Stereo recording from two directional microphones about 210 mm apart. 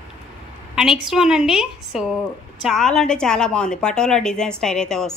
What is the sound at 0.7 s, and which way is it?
A woman's voice, centre (ahead or behind).